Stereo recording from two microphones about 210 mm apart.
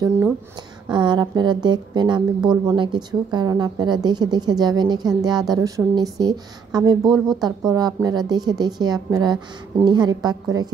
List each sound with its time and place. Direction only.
0.8 s a woman's voice: 20° right (ahead or behind)